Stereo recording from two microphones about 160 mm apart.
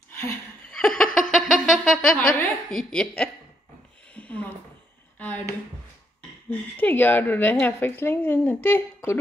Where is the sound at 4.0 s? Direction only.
10° left (ahead or behind).